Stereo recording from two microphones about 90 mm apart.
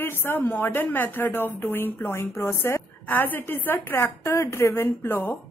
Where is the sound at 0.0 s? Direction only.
25° left (ahead or behind).